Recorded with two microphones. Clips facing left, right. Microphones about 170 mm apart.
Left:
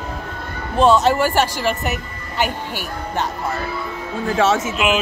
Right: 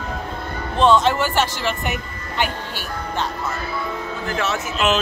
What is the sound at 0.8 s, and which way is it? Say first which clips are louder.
Speech: left 1 dB; 10° left (ahead or behind).